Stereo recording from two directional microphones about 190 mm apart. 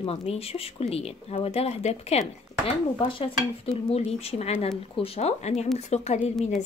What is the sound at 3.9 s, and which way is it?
A woman's voice, 35° left (ahead or behind).